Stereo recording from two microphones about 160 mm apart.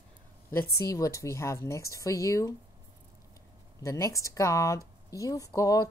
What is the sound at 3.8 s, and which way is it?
Speech, 20° left (ahead or behind).